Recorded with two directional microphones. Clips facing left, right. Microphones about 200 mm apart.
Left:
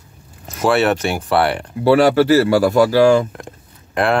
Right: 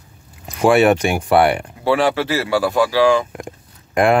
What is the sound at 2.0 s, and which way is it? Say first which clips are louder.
Speech: left 6 dB; 45° left (ahead or behind).